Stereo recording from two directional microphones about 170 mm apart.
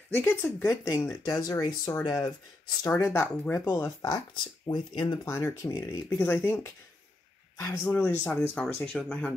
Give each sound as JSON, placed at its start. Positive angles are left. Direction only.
{"t": 0.1, "sound": "speech", "side_deg": 10}
{"t": 7.8, "sound": "speech", "side_deg": 10}